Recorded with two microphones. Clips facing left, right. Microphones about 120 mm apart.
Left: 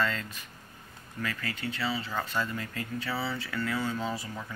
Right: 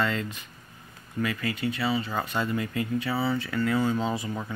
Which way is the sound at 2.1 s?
20° right (ahead or behind).